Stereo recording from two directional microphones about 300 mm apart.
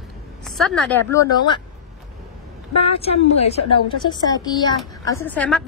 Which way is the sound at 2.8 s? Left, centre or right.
Centre.